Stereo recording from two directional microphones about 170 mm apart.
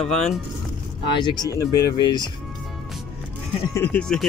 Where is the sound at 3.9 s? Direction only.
5° left (ahead or behind).